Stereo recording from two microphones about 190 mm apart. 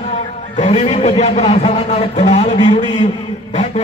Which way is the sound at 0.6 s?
35° left (ahead or behind).